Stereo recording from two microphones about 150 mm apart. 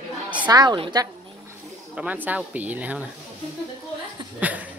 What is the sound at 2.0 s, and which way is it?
Speech, 10° right (ahead or behind).